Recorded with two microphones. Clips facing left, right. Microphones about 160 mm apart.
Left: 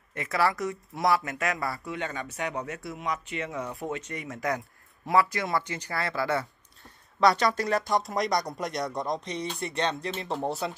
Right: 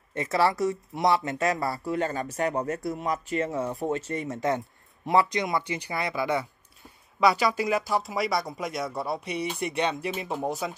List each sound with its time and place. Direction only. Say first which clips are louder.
0.1 s speech: right 3 dB; 30° right (ahead or behind)
6.8 s speech: even; 5° right (ahead or behind)